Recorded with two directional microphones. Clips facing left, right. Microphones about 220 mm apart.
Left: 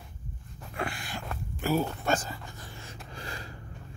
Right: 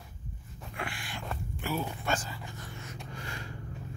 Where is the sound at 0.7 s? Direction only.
40° left (ahead or behind).